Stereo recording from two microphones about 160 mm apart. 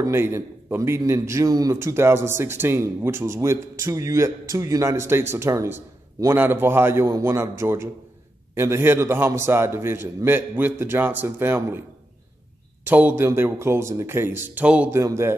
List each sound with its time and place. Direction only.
0.0 s a man's voice: 15° right (ahead or behind)
12.8 s a man's voice: 10° right (ahead or behind)